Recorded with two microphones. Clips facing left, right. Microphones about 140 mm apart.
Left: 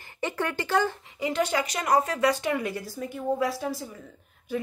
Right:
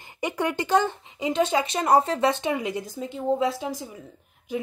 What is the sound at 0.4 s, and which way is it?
Speech, 15° right (ahead or behind).